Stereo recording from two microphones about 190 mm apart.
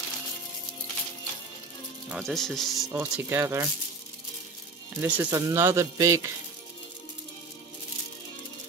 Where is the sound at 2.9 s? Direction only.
10° right (ahead or behind).